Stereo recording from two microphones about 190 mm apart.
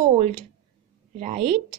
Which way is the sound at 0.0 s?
40° right (ahead or behind).